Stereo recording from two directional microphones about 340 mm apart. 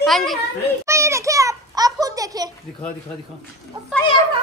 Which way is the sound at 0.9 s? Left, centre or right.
Centre.